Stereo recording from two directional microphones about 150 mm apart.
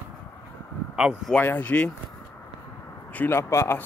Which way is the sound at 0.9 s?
5° right (ahead or behind).